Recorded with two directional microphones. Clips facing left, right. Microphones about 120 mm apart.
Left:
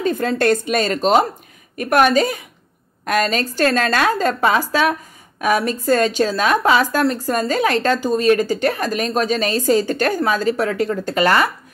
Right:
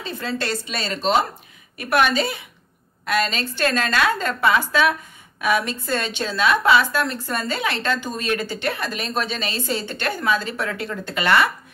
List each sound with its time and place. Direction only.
0.0 s a woman's voice: 45° left (ahead or behind)